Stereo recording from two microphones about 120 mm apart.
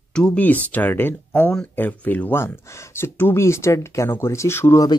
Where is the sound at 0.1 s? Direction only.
5° left (ahead or behind).